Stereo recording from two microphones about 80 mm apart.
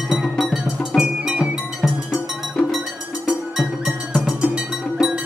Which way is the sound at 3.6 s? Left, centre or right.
Centre.